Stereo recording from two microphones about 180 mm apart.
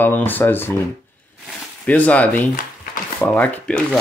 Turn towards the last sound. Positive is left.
turn(degrees=10)  # may be behind; listen again after turning